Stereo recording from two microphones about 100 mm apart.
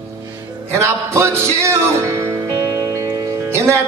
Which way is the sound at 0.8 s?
25° right (ahead or behind).